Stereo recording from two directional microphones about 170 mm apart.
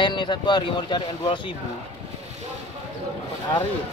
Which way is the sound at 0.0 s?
25° left (ahead or behind).